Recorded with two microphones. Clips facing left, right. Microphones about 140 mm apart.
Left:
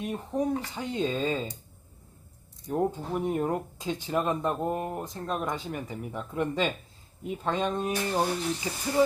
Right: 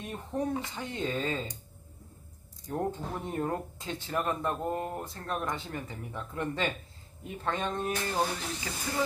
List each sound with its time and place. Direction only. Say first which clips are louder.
0.0 s speech: left 4 dB; 15° left (ahead or behind)
2.7 s speech: left 5 dB; 15° left (ahead or behind)